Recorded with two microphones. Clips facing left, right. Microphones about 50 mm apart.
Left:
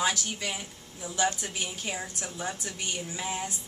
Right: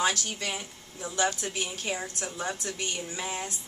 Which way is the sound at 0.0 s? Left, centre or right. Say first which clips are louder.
Right 1 dB; centre.